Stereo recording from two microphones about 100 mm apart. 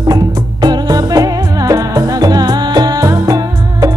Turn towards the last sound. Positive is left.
turn(degrees=-35)  # may be behind; listen again after turning